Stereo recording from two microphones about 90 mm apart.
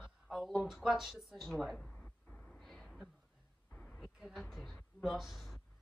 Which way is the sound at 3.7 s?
20° left (ahead or behind).